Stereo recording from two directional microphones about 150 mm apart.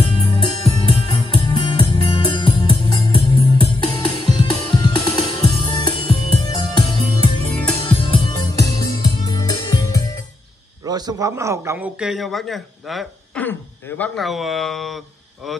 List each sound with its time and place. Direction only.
0.0 s music: 40° left (ahead or behind)
10.9 s a man's voice: 25° right (ahead or behind); by 13.4 s centre (ahead or behind)
13.4 s speech: 10° left (ahead or behind)